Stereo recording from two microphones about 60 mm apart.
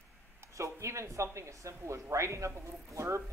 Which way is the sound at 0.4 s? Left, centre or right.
Right.